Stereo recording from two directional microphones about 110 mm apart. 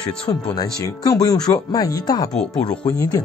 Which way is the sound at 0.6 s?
35° left (ahead or behind).